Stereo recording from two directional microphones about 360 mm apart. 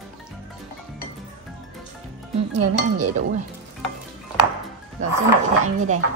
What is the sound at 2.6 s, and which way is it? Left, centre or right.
Speech, right.